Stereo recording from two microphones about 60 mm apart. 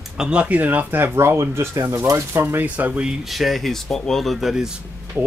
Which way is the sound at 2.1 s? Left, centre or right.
Right.